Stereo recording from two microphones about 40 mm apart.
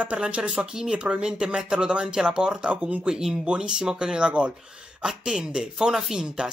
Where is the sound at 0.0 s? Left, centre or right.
Right.